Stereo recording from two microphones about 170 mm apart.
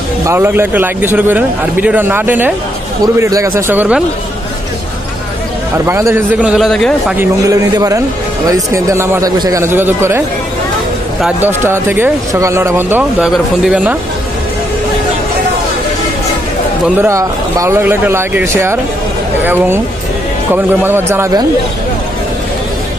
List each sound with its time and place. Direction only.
0.2 s a man's voice: 15° right (ahead or behind)
5.9 s a man's voice: 15° right (ahead or behind); by 7.2 s 5° left (ahead or behind)
7.2 s a man's voice: 20° right (ahead or behind)
16.8 s a man's voice: 15° right (ahead or behind)